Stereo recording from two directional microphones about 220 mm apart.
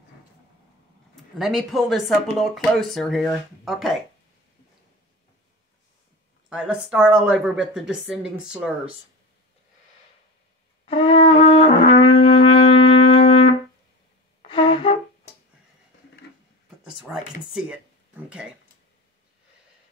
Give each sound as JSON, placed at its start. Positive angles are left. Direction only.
{"t": 1.4, "sound": "speech", "side_deg": 0}
{"t": 6.5, "sound": "speech", "side_deg": -5}
{"t": 10.9, "sound": "shofar", "side_deg": 25}
{"t": 14.4, "sound": "wind instrument", "side_deg": 25}
{"t": 17.0, "sound": "speech", "side_deg": -5}